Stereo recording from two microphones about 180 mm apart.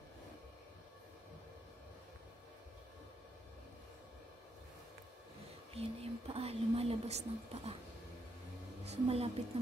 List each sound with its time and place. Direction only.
5.7 s speech: 35° right (ahead or behind)
8.8 s speech: 35° right (ahead or behind)